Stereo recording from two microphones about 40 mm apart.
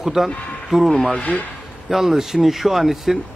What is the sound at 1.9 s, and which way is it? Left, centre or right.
A man's voice, centre.